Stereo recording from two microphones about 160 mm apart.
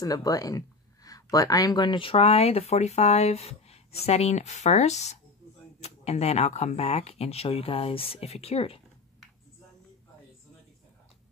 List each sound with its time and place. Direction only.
0.0 s speech: 20° left (ahead or behind)